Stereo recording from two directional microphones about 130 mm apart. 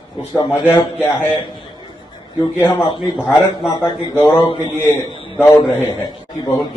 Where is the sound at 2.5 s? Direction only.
20° left (ahead or behind).